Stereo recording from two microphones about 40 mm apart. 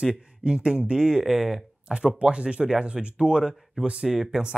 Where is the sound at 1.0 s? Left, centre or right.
Centre.